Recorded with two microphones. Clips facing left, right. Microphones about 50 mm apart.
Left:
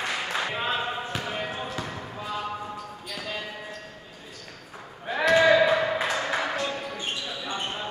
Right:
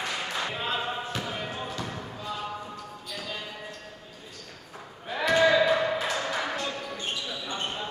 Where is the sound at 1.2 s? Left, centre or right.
Left.